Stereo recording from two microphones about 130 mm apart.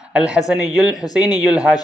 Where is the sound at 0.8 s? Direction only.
30° left (ahead or behind).